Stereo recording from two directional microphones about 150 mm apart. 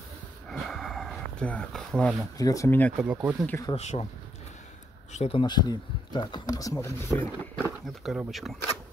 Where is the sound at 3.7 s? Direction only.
45° left (ahead or behind).